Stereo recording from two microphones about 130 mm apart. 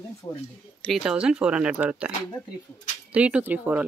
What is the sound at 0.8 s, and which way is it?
Speech, 5° right (ahead or behind).